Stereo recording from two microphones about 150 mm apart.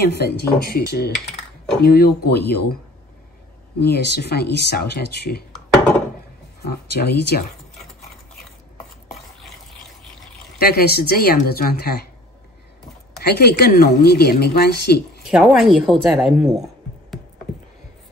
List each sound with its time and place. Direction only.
0.1 s a woman's voice: 90° left
3.8 s a woman's voice: 90° left
6.6 s a woman's voice: 90° left
9.1 s a sound: centre (ahead or behind)
10.6 s a woman's voice: 90° left
13.2 s a woman's voice: 90° left
15.2 s speech: centre (ahead or behind)